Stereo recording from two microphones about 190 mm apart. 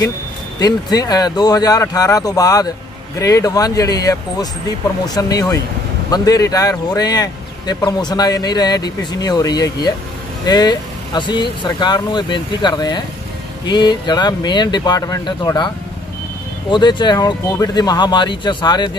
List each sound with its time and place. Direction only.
0.6 s speech: 20° left (ahead or behind)
16.7 s speech: 25° left (ahead or behind)